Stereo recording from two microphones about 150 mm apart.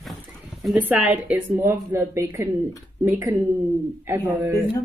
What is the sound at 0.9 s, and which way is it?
A woman's voice, 10° right (ahead or behind).